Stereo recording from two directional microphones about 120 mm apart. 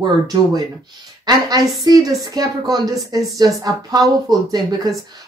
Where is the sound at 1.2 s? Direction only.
30° right (ahead or behind).